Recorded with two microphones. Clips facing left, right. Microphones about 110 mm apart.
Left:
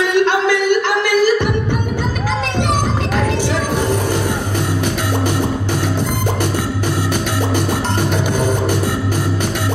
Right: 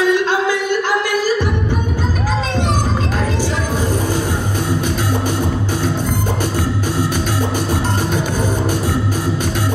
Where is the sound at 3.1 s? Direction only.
65° left (ahead or behind).